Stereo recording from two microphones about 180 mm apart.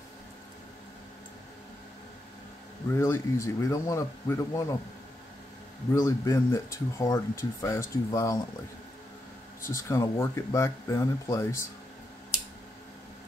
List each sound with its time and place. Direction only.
2.9 s speech: 15° left (ahead or behind)
5.9 s speech: 15° left (ahead or behind)
9.6 s speech: 15° left (ahead or behind)